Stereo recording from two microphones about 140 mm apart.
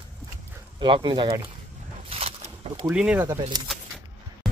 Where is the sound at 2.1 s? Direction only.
45° right (ahead or behind).